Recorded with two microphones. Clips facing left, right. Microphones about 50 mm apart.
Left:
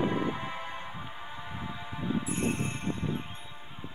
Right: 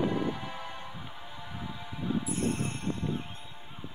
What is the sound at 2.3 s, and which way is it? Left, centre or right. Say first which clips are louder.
Music: even; left.